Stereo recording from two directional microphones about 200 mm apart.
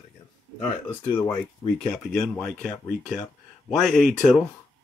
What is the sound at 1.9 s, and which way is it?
Speech, 5° left (ahead or behind).